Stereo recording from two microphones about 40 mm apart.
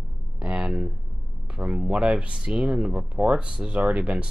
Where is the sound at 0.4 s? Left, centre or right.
Right.